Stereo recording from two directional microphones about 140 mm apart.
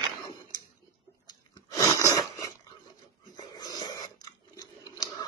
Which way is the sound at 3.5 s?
30° left (ahead or behind).